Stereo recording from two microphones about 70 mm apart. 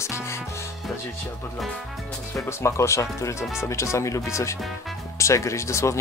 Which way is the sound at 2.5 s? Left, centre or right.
Left.